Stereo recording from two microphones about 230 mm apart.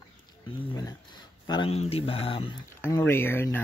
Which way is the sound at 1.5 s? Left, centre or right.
Left.